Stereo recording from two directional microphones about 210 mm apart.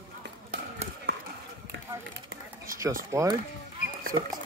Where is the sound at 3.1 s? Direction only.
15° right (ahead or behind).